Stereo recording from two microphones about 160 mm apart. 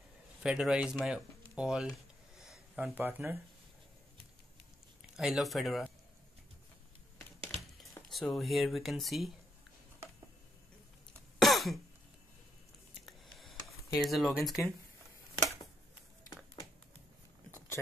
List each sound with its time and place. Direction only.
0.4 s speech: 5° right (ahead or behind)
5.1 s speech: centre (ahead or behind)
7.3 s a sound: 35° right (ahead or behind)
8.1 s speech: centre (ahead or behind)
11.4 s throat clearing: centre (ahead or behind)
13.0 s a sound: centre (ahead or behind)
13.9 s speech: centre (ahead or behind)